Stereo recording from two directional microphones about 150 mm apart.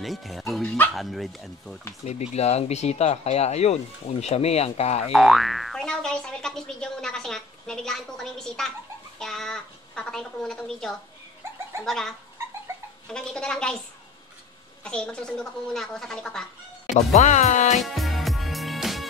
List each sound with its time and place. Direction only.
0.0 s speech: centre (ahead or behind)
2.0 s speech: 45° left (ahead or behind)
5.1 s speech: centre (ahead or behind)
13.1 s speech: 5° left (ahead or behind)
14.8 s speech: 5° left (ahead or behind)
16.8 s speech: 55° left (ahead or behind)
17.7 s music: centre (ahead or behind)